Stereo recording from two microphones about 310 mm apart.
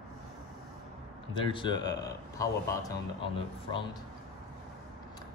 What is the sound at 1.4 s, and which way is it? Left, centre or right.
Speech, centre.